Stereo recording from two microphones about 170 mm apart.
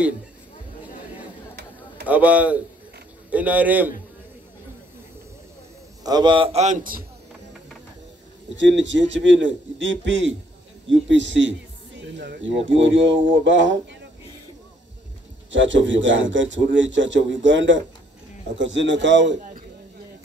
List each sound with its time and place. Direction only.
2.0 s a man's voice: 10° right (ahead or behind)
6.0 s a man's voice: 25° right (ahead or behind); by 7.1 s 55° right (ahead or behind)
8.5 s a man's voice: 90° right
15.5 s a man's voice: 90° right